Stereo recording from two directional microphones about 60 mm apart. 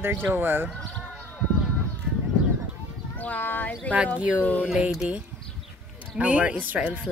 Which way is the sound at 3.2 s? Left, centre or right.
Left.